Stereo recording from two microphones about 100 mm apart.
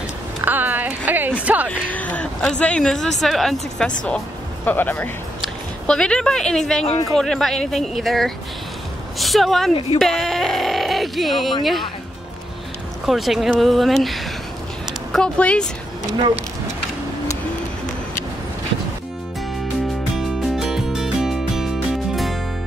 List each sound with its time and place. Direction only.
0.4 s a sound: 20° right (ahead or behind)
1.4 s speech: 15° right (ahead or behind)
1.7 s a sound: 15° left (ahead or behind)
2.4 s a woman's voice: 10° left (ahead or behind)
5.9 s a woman's voice: 10° left (ahead or behind)
13.0 s a woman's voice: centre (ahead or behind)
20.2 s music: 5° right (ahead or behind)